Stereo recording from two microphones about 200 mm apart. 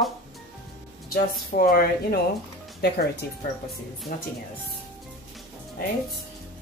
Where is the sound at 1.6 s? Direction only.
45° left (ahead or behind).